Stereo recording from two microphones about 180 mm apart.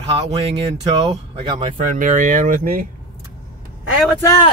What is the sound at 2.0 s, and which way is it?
Speech, 45° right (ahead or behind).